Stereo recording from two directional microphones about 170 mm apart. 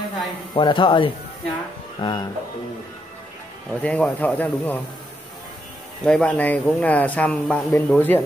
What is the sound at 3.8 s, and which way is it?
Speech, 10° left (ahead or behind).